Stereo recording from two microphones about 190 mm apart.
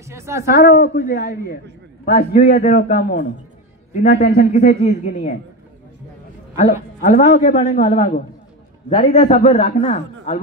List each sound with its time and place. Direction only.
0.0 s speech: 15° right (ahead or behind)
0.7 s a man's voice: 50° left (ahead or behind)
3.9 s a man's voice: 35° left (ahead or behind)
6.5 s a man's voice: 40° left (ahead or behind)